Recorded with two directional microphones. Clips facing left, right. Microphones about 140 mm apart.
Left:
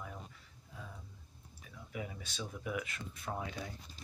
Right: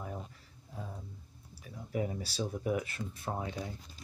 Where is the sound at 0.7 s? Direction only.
40° right (ahead or behind).